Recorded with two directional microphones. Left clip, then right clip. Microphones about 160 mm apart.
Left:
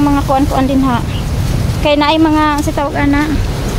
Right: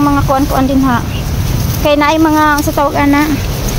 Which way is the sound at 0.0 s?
10° right (ahead or behind).